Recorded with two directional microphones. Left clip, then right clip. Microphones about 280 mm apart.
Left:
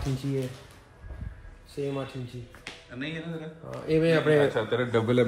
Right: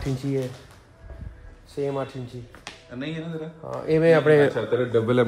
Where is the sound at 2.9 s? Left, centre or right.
Centre.